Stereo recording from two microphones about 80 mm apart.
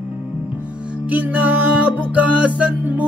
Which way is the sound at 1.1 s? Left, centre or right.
Right.